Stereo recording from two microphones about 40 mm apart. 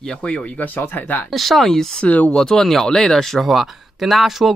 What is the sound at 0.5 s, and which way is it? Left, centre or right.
Speech, left.